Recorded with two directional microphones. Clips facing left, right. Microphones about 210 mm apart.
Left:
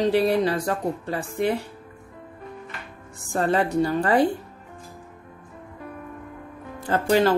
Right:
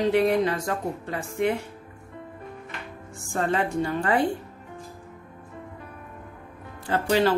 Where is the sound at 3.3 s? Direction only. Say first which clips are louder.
Left 3 dB; 35° left (ahead or behind).